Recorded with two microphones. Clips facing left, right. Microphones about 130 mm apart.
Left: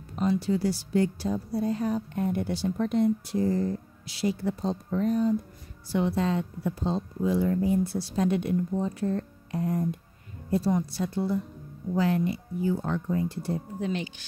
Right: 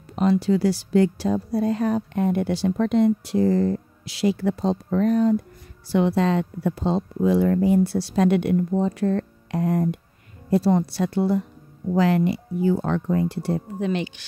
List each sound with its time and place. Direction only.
0.1 s speech: 75° right (ahead or behind)